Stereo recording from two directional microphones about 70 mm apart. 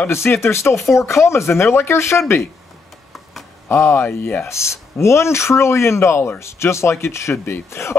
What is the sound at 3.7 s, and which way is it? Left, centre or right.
Speech, left.